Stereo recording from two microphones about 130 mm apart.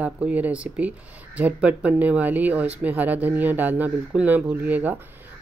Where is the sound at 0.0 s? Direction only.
10° right (ahead or behind).